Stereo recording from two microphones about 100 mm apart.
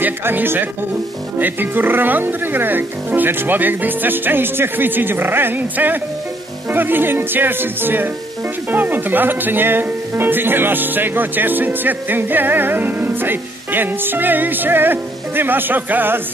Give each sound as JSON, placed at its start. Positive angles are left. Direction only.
{"t": 0.0, "sound": "speech", "side_deg": -20}